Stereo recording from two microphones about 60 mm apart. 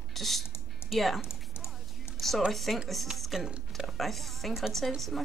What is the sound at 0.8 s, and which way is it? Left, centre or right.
Speech, centre.